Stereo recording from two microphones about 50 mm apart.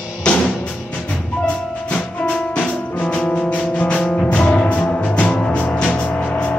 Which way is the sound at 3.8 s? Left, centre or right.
Left.